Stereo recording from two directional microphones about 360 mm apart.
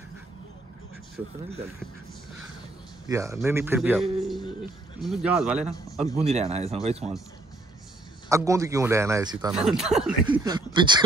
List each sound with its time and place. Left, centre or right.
3.1 s a man's voice: centre
6.1 s a man's voice: centre
8.3 s a man's voice: centre